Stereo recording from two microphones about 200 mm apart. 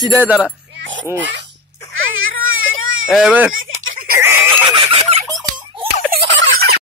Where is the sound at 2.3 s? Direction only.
85° right.